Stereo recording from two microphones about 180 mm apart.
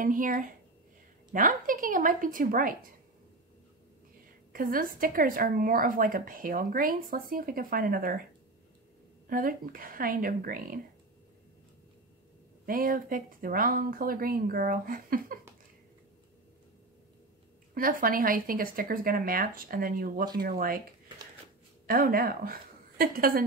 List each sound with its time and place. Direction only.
0.0 s a woman's voice: 50° right (ahead or behind)
4.5 s a woman's voice: 50° right (ahead or behind)
9.3 s a woman's voice: 50° right (ahead or behind)
12.6 s a woman's voice: 50° right (ahead or behind)
17.7 s a woman's voice: 50° right (ahead or behind)
21.8 s a woman's voice: 55° right (ahead or behind)